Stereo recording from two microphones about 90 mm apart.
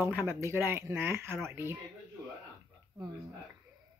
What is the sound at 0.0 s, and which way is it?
Speech, 25° right (ahead or behind).